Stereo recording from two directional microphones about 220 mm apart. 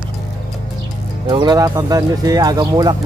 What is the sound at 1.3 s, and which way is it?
Speech, 20° right (ahead or behind).